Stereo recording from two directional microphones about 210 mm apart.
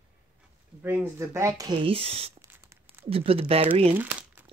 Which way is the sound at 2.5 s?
10° right (ahead or behind).